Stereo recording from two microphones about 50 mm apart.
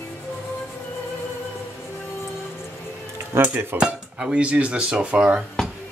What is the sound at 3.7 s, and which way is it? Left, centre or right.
Speech, centre.